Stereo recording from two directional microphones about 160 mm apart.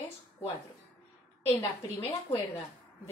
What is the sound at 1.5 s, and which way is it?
A woman's voice, 35° left (ahead or behind).